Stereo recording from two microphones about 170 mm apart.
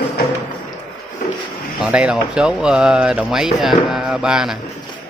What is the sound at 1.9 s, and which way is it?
Speech, 5° right (ahead or behind).